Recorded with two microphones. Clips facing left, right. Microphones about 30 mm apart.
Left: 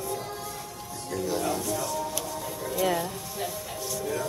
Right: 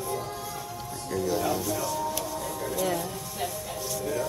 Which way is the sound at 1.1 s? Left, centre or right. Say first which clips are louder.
Right 1 dB; centre.